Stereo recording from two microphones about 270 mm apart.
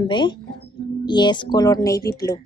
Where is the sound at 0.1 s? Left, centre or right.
Centre.